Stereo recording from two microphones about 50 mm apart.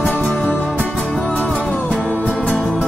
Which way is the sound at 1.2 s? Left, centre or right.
Left.